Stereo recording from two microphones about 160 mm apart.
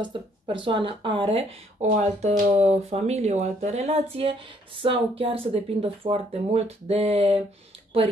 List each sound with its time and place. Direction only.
0.0 s speech: 30° right (ahead or behind)